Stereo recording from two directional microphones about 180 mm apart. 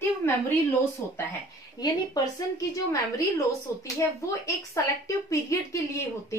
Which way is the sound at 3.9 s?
15° left (ahead or behind).